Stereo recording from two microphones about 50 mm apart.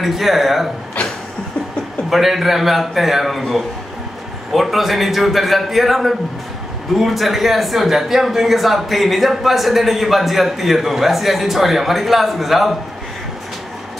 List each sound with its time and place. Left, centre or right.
0.0 s speech: centre
2.0 s speech: centre